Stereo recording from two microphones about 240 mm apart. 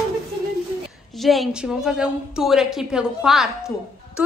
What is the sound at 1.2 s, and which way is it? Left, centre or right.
A woman's voice, centre.